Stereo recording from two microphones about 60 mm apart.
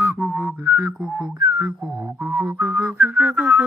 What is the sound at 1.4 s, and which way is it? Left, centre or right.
Whistling, right.